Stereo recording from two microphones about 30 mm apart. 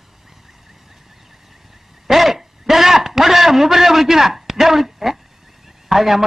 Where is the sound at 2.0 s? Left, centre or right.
Centre.